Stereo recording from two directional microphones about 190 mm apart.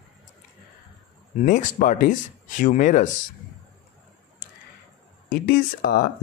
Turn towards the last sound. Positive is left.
turn(degrees=50)  # may be behind; listen again after turning